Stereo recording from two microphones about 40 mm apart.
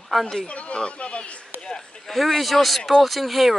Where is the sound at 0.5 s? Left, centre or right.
Left.